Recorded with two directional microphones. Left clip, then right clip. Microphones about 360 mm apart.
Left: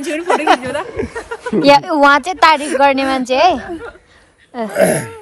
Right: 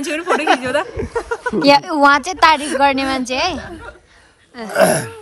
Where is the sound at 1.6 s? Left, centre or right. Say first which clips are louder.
Left 2 dB; centre.